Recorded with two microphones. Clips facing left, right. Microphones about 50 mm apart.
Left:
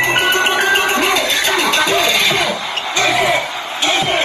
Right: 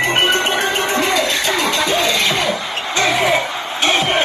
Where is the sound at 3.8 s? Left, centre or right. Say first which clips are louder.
Even; right.